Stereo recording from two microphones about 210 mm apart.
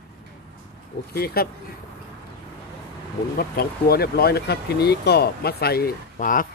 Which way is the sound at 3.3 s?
45° left (ahead or behind).